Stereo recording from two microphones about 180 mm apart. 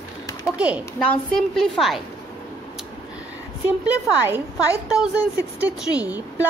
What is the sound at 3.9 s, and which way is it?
A woman's voice, 10° right (ahead or behind).